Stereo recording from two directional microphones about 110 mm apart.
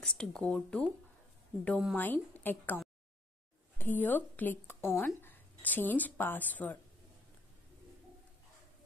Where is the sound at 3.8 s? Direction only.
20° left (ahead or behind).